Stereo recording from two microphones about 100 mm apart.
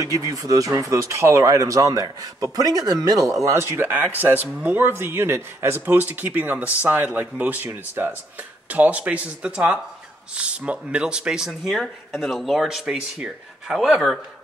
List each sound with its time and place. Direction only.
0.0 s speech: 35° right (ahead or behind)
3.4 s speech: 25° right (ahead or behind); by 14.2 s centre (ahead or behind)